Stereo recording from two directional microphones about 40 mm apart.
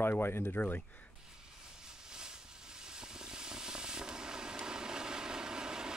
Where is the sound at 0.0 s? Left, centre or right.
Left.